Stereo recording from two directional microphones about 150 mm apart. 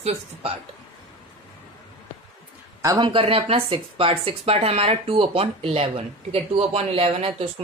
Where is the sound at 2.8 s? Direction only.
20° right (ahead or behind).